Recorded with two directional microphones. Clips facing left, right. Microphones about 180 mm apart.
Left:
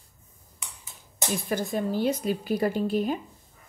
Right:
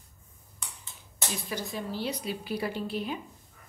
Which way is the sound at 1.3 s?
50° left (ahead or behind).